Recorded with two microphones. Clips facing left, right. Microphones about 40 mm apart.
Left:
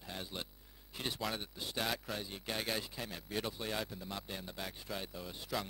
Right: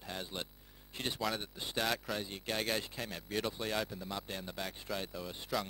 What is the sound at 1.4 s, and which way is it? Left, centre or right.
Speech, centre.